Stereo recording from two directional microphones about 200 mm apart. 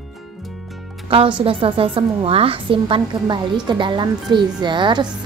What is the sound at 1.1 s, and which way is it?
A woman's voice, 25° right (ahead or behind).